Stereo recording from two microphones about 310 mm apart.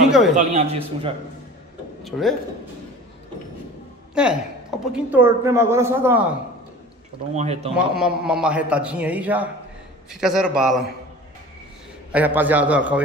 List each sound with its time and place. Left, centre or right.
0.4 s a man's voice: right
2.0 s speech: centre
4.1 s speech: centre
7.3 s a man's voice: centre
7.7 s a man's voice: centre
12.1 s a man's voice: centre